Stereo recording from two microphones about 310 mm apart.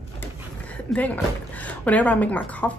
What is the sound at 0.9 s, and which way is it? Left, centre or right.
Speech, centre.